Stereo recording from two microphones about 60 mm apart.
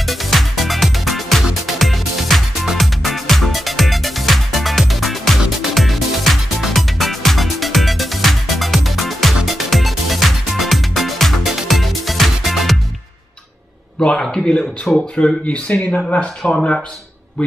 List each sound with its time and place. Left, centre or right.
0.0 s music: centre
13.9 s speech: centre
15.4 s speech: left